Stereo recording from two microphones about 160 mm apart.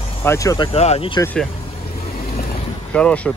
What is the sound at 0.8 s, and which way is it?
Speech, 40° left (ahead or behind).